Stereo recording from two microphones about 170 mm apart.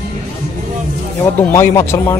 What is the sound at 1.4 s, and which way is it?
Speech, 15° left (ahead or behind).